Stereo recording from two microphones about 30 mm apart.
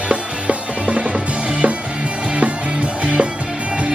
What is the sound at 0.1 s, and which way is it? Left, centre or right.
Music, right.